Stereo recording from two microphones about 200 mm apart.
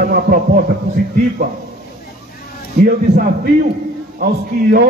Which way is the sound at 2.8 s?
50° right (ahead or behind).